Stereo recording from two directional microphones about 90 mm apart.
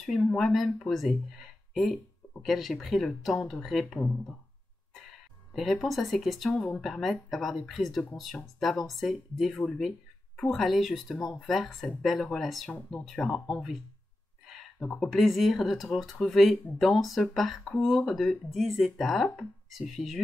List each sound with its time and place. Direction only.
0.4 s speech: centre (ahead or behind)
5.5 s speech: centre (ahead or behind)
14.9 s speech: 5° left (ahead or behind)